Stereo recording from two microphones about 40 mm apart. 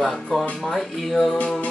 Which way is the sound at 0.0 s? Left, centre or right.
Centre.